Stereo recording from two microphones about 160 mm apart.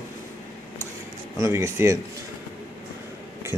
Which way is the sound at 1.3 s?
15° right (ahead or behind).